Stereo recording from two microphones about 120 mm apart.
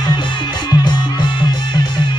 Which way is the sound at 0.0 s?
40° left (ahead or behind).